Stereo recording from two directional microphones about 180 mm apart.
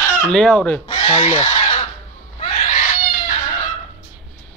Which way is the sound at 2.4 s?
30° left (ahead or behind).